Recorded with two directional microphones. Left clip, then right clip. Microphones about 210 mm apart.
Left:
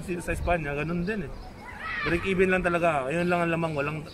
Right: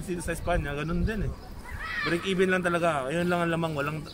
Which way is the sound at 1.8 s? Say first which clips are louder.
Even; 55° right (ahead or behind).